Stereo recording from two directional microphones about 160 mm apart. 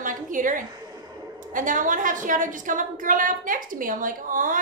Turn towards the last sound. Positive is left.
turn(degrees=-55)  # may be behind; listen again after turning